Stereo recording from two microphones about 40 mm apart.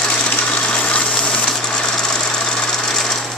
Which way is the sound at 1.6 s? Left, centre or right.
Centre.